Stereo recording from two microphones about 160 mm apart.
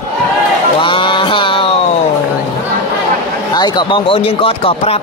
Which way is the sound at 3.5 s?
25° left (ahead or behind).